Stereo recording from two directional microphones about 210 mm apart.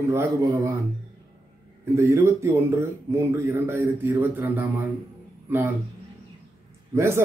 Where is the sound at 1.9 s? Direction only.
15° right (ahead or behind).